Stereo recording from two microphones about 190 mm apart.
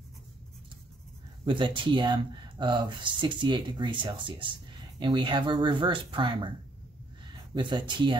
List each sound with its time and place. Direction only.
1.4 s speech: 25° right (ahead or behind)
7.5 s speech: 25° right (ahead or behind)